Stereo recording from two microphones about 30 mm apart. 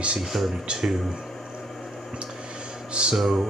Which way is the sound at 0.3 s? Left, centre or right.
Right.